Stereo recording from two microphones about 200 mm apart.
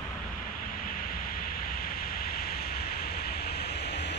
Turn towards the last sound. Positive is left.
turn(degrees=55)  # may be behind; listen again after turning